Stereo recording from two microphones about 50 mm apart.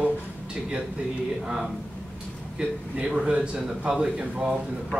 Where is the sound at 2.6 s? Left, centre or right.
Centre.